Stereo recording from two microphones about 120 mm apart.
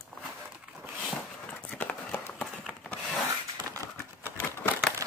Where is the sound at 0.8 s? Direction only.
10° right (ahead or behind).